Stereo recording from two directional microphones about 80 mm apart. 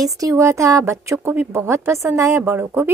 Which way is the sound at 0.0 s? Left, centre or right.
Right.